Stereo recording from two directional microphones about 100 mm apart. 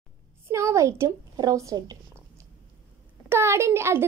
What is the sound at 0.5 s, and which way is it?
A woman's voice, 30° right (ahead or behind).